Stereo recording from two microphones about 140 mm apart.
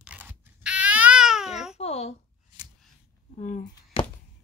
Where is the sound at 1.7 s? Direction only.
50° left (ahead or behind).